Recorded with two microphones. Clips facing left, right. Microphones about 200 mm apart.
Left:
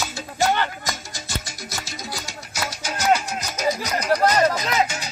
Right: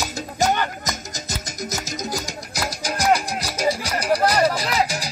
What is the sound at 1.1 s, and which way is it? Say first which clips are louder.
Music: right 2 dB; 40° right (ahead or behind).